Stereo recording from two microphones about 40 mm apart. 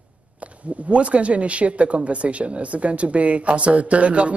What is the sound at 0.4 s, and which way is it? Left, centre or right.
Speech, right.